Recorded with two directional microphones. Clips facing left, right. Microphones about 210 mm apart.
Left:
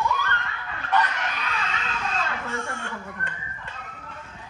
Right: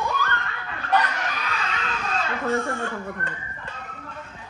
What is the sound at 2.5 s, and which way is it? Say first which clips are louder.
Speech: right 8 dB; 35° right (ahead or behind).